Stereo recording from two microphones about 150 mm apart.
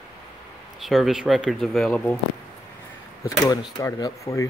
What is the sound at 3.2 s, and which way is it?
Speech, 25° left (ahead or behind).